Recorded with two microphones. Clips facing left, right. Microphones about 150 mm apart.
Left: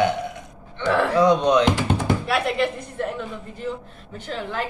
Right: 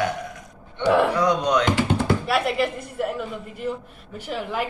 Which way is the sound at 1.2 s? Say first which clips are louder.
Left 4 dB; 25° left (ahead or behind).